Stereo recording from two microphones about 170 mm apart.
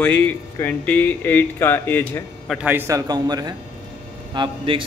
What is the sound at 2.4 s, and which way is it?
A man's voice, 5° right (ahead or behind).